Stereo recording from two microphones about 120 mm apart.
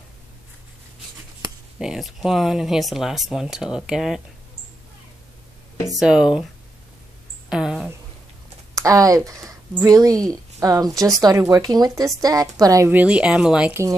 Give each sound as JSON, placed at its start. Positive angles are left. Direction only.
{"t": 1.8, "sound": "speech", "side_deg": -5}
{"t": 5.9, "sound": "speech", "side_deg": -5}
{"t": 7.4, "sound": "a sound", "side_deg": -5}
{"t": 8.7, "sound": "a woman's voice", "side_deg": -30}
{"t": 12.9, "sound": "speech", "side_deg": -10}